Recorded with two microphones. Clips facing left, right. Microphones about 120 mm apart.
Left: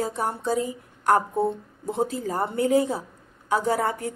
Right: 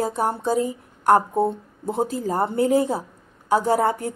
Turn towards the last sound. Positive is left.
turn(degrees=-30)  # may be behind; listen again after turning